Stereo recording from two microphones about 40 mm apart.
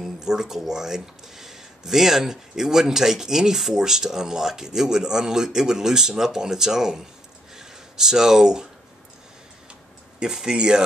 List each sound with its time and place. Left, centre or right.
0.0 s speech: centre
7.5 s a sound: centre
10.2 s speech: centre